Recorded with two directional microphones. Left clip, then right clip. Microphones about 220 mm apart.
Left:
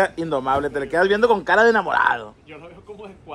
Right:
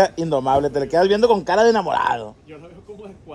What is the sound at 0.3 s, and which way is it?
A man's voice, 20° left (ahead or behind).